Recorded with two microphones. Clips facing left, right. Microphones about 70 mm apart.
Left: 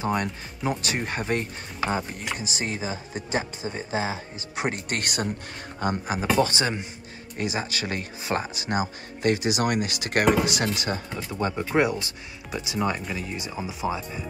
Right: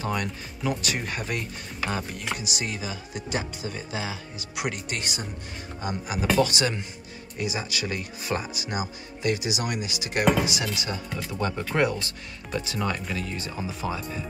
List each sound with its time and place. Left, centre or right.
0.0 s speech: left
4.8 s speech: left
5.8 s speech: left
6.3 s speech: left
11.1 s speech: left